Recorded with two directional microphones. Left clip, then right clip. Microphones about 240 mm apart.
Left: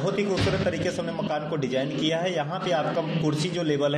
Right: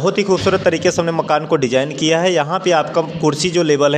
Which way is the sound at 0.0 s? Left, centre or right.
Right.